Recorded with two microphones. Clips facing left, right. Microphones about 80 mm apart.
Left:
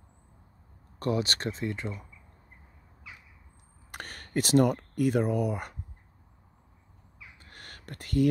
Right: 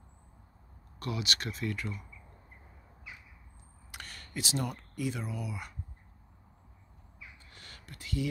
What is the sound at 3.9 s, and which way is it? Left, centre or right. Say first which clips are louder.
Speech: left 7 dB; left.